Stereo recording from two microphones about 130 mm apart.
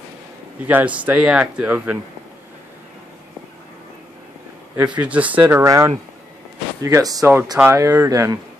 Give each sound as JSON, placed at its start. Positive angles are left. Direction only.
{"t": 0.7, "sound": "speech", "side_deg": -10}
{"t": 4.7, "sound": "speech", "side_deg": -10}